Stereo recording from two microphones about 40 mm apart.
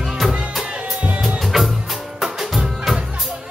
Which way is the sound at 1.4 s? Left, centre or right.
Centre.